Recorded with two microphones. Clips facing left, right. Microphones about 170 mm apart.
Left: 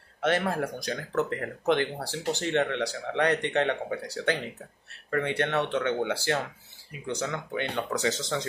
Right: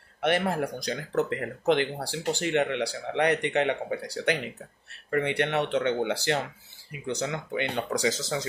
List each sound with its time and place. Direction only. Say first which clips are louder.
0.4 s speech: right 1 dB; 20° right (ahead or behind)